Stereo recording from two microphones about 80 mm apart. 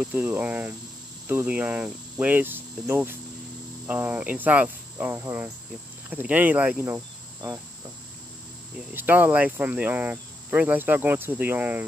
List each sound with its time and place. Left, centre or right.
0.0 s speech: right
8.9 s speech: right